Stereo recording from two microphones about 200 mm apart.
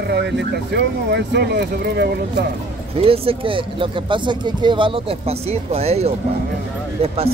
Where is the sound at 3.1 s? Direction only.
25° right (ahead or behind).